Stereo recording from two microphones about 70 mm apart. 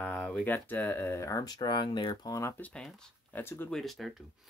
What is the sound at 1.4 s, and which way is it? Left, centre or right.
Speech, left.